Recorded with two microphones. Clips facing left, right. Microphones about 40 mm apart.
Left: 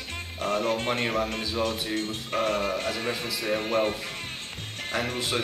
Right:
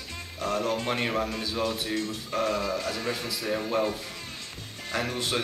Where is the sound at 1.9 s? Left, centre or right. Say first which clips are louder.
Left 1 dB; left.